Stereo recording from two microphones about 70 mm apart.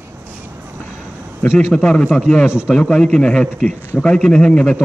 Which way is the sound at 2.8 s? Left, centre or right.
Centre.